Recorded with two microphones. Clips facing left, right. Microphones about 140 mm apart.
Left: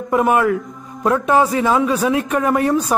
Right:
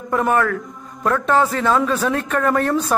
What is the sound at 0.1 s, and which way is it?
Speech, 15° left (ahead or behind).